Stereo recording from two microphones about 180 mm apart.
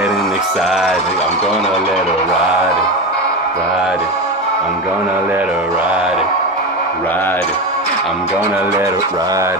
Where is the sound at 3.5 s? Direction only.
Centre (ahead or behind).